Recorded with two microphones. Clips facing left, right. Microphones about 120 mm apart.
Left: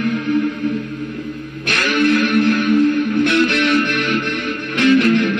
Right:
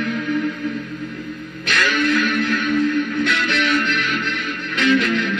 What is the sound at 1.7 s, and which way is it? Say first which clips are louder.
Music: left 3 dB; 45° left (ahead or behind).